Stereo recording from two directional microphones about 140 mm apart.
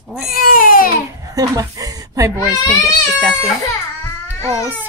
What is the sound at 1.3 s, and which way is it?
Speech, 25° right (ahead or behind).